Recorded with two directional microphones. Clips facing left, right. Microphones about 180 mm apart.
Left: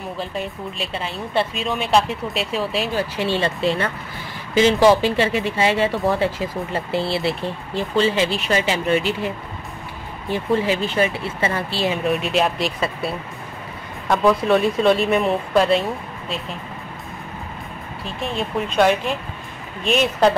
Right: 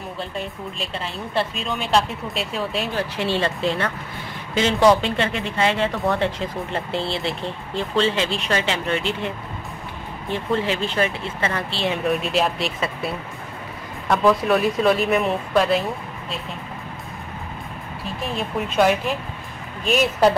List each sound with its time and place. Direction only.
0.7 s speech: centre (ahead or behind)
10.3 s speech: 5° left (ahead or behind)
18.2 s speech: 5° right (ahead or behind)